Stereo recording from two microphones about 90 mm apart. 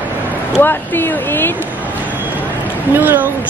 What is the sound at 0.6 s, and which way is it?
Speech, 25° left (ahead or behind).